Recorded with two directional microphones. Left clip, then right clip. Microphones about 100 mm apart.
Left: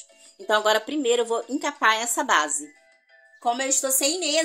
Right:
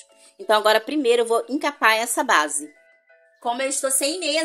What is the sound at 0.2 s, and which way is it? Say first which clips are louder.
Speech: right 3 dB; 30° right (ahead or behind).